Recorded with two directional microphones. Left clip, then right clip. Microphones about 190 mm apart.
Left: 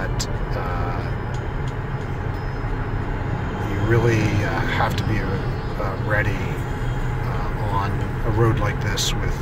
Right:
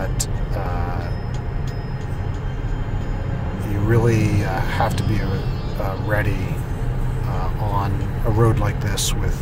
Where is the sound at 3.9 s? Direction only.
25° right (ahead or behind).